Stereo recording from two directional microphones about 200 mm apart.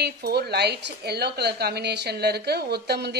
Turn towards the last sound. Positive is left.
turn(degrees=-55)  # may be behind; listen again after turning